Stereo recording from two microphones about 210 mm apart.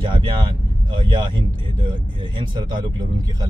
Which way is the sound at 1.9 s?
20° right (ahead or behind).